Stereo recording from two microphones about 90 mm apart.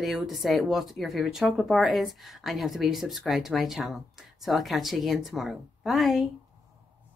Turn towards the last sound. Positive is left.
turn(degrees=0)  # may be behind; listen again after turning